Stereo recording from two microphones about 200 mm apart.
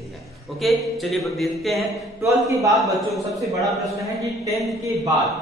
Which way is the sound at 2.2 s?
15° right (ahead or behind).